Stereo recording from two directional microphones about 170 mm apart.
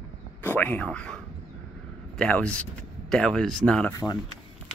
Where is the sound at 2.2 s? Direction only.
5° left (ahead or behind).